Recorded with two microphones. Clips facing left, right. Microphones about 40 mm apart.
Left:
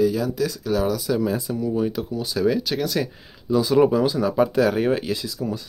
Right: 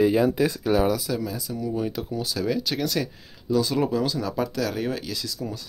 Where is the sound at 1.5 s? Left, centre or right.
Centre.